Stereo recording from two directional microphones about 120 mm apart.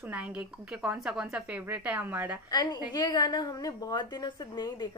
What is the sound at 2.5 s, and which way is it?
A woman's voice, 35° left (ahead or behind).